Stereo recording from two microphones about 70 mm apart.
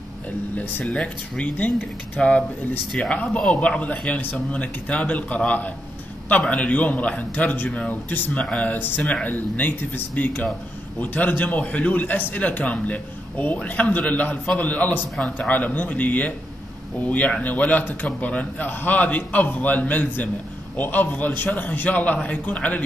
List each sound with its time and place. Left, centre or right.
0.6 s a man's voice: left
2.1 s a man's voice: centre